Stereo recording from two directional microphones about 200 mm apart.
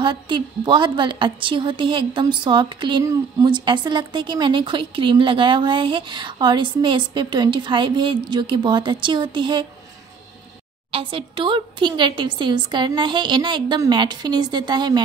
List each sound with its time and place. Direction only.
0.0 s a woman's voice: 25° right (ahead or behind)
10.9 s a woman's voice: 25° right (ahead or behind)